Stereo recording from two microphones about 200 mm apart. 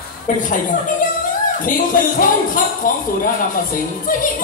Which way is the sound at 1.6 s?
45° left (ahead or behind).